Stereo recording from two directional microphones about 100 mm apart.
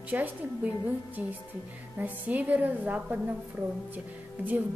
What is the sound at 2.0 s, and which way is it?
A woman's voice, 15° right (ahead or behind).